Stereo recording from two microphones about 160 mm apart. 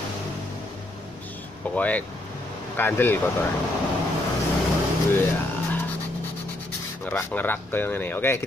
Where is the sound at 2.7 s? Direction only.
15° left (ahead or behind).